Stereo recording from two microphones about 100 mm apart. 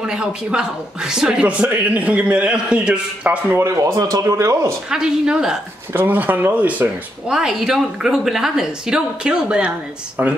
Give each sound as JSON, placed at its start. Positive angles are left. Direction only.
{"t": 0.0, "sound": "speech", "side_deg": -10}
{"t": 3.5, "sound": "speech", "side_deg": -30}
{"t": 4.8, "sound": "speech", "side_deg": -5}
{"t": 7.2, "sound": "speech", "side_deg": -5}
{"t": 10.2, "sound": "speech", "side_deg": -20}